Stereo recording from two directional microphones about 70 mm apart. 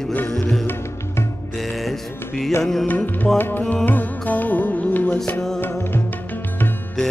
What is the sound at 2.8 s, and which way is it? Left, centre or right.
Music, left.